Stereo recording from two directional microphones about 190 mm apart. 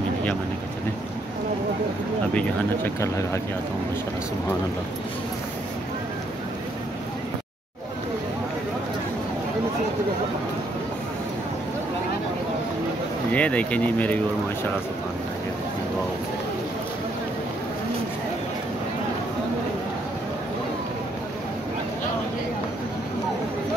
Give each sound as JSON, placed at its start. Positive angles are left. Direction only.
{"t": 2.3, "sound": "speech", "side_deg": 10}
{"t": 13.3, "sound": "speech", "side_deg": 5}